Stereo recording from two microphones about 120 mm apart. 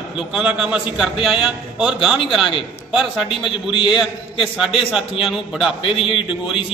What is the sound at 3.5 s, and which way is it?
Speech, 45° left (ahead or behind).